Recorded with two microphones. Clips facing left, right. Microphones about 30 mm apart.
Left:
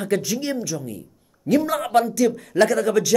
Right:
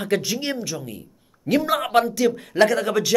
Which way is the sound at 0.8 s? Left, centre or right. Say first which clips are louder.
Left 2 dB; right.